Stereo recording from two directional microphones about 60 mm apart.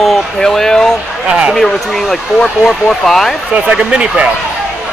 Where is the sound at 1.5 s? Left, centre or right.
Centre.